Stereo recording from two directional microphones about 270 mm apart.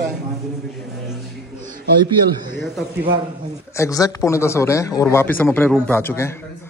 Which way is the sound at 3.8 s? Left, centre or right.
Centre.